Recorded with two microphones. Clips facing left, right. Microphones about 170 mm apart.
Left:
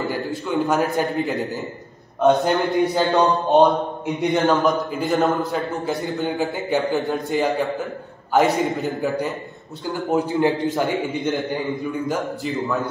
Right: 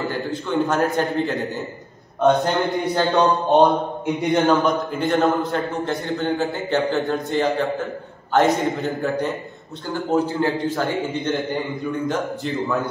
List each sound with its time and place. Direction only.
0.5 s a man's voice: centre (ahead or behind)
6.2 s a man's voice: 15° left (ahead or behind)
10.1 s a man's voice: 20° left (ahead or behind)
12.0 s a man's voice: centre (ahead or behind)